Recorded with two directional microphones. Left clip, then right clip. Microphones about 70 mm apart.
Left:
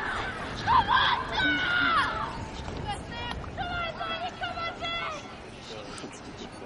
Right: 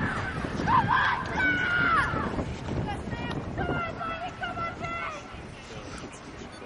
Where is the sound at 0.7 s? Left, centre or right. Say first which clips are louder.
Left 1 dB; left.